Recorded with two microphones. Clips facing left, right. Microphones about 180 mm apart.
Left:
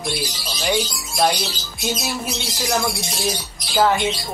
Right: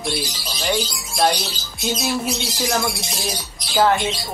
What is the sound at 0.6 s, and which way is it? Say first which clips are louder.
Speech: left 1 dB; centre (ahead or behind).